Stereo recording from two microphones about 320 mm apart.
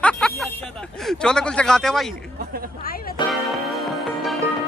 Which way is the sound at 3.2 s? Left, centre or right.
Centre.